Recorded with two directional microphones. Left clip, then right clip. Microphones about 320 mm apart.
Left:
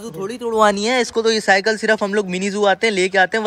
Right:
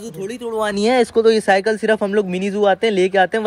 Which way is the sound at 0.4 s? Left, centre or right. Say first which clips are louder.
Left 7 dB; left.